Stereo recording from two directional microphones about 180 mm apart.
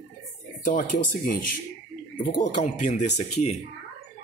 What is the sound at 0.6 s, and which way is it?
Speech, 50° left (ahead or behind).